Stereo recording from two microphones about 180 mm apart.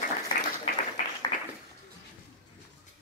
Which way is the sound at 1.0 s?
50° left (ahead or behind).